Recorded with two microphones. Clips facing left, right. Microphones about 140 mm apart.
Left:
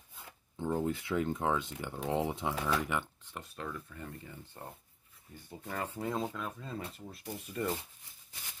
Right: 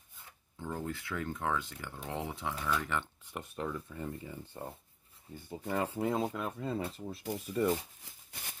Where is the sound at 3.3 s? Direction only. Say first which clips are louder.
Right 4 dB; 15° right (ahead or behind).